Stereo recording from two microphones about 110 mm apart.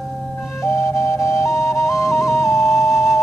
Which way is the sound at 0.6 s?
25° left (ahead or behind).